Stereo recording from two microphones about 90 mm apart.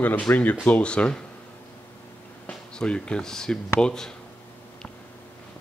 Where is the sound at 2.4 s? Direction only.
10° left (ahead or behind).